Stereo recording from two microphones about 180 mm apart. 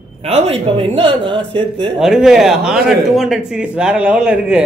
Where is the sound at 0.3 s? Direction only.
30° right (ahead or behind).